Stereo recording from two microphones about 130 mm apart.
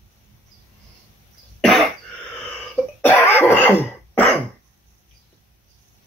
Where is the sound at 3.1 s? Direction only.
15° left (ahead or behind).